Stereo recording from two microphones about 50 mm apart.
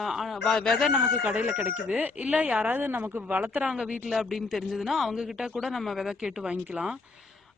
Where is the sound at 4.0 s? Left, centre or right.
Centre.